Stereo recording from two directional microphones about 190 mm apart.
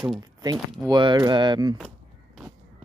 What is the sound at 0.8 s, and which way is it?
Speech, 20° right (ahead or behind).